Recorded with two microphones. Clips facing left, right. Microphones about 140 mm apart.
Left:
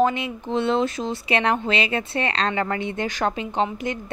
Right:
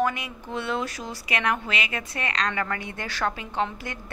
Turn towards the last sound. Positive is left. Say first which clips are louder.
# left 5 dB
turn(degrees=20)  # may be behind; listen again after turning